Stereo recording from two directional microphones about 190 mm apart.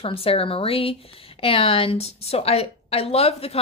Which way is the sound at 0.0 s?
30° left (ahead or behind).